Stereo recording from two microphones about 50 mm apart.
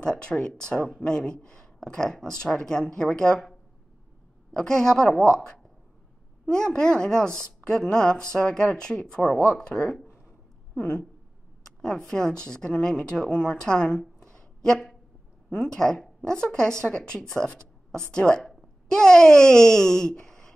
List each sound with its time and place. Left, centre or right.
0.0 s a woman's voice: centre
4.6 s a woman's voice: centre
11.8 s a woman's voice: centre
20.2 s a sound: centre